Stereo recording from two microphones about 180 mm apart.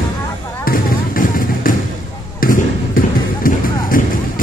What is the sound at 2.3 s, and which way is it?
Basketball bounce, 50° left (ahead or behind).